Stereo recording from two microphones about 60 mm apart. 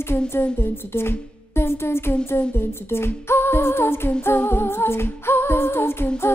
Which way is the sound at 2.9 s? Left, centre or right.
Left.